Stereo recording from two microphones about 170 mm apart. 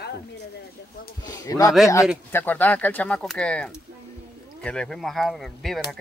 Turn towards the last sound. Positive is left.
turn(degrees=0)  # may be behind; listen again after turning